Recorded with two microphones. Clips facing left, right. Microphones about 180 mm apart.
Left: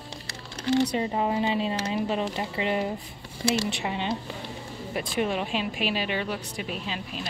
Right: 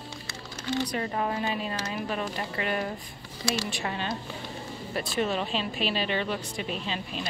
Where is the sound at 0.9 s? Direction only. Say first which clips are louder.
Left 3 dB; 20° left (ahead or behind).